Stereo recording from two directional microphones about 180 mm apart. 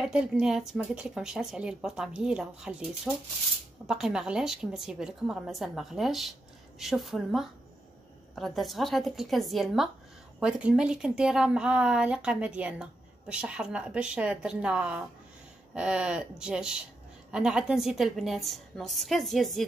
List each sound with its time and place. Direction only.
0.0 s speech: 5° right (ahead or behind)